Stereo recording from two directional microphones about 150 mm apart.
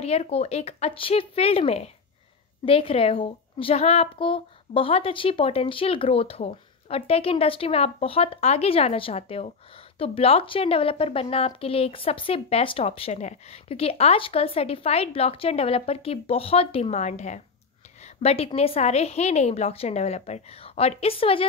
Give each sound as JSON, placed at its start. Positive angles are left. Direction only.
{"t": 0.0, "sound": "a woman's voice", "side_deg": 45}